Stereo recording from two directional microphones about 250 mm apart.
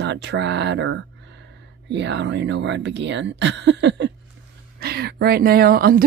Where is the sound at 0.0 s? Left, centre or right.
Right.